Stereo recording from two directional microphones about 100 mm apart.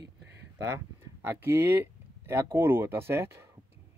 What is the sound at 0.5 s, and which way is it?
Speech, 25° right (ahead or behind).